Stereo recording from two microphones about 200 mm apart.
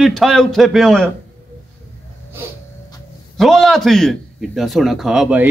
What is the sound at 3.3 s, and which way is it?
Speech, centre (ahead or behind).